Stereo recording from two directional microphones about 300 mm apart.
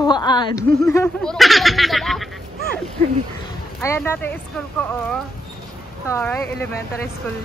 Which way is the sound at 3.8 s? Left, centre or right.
Centre.